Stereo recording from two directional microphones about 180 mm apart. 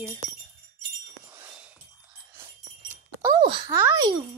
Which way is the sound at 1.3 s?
10° right (ahead or behind).